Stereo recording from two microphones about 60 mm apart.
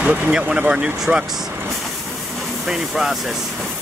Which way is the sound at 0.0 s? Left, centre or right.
Centre.